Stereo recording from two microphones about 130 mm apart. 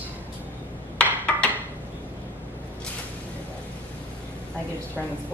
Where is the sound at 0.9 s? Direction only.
10° left (ahead or behind).